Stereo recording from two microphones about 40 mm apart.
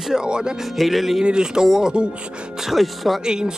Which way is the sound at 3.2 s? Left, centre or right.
Centre.